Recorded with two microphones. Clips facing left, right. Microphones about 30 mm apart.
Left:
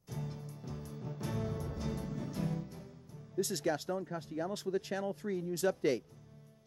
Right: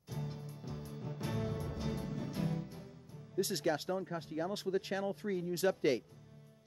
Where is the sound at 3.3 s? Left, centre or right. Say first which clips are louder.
Even; right.